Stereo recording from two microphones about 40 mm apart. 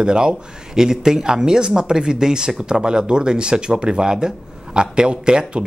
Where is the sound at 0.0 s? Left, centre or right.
Right.